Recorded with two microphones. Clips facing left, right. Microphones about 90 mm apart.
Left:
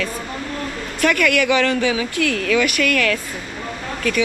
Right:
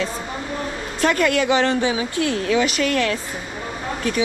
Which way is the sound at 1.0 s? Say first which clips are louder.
Left 1 dB; 30° right (ahead or behind).